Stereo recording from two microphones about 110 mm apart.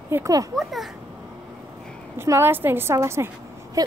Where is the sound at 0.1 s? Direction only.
30° right (ahead or behind).